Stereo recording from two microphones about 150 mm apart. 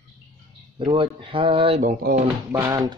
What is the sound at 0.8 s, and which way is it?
Speech, 35° right (ahead or behind).